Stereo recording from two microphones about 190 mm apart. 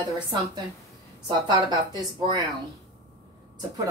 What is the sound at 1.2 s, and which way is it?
A woman's voice, 20° right (ahead or behind).